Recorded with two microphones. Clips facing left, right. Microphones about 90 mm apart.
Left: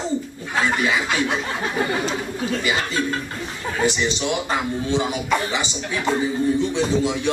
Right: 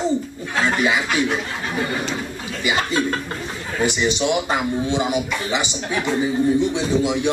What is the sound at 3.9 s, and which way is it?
A man's voice, 15° right (ahead or behind).